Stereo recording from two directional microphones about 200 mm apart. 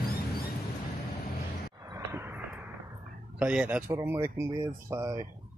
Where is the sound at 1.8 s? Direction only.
15° right (ahead or behind).